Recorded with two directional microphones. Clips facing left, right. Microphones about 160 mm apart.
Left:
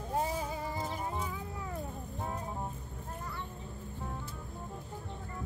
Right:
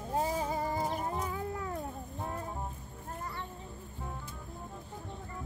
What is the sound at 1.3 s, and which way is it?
Cat, 55° right (ahead or behind).